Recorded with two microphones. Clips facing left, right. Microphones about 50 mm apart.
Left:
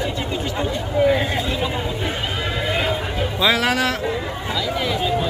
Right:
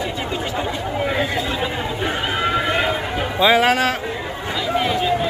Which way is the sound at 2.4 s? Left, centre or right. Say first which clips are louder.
Right 3 dB; right.